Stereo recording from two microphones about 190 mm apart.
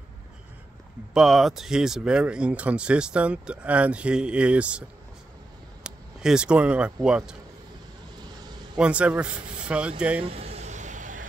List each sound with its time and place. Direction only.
1.1 s speech: centre (ahead or behind)
5.9 s speech: 5° right (ahead or behind)
8.7 s speech: 5° right (ahead or behind)
10.2 s vehicle: 30° right (ahead or behind)